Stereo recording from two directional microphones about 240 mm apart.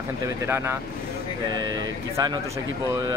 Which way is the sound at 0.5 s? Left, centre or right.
Centre.